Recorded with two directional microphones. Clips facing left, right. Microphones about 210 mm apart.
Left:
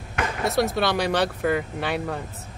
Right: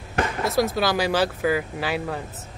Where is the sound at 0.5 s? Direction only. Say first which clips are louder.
Left 1 dB; centre (ahead or behind).